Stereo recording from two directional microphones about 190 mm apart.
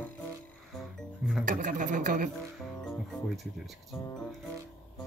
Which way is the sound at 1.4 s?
45° right (ahead or behind).